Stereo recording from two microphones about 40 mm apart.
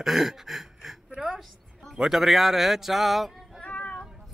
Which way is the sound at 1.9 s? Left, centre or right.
Centre.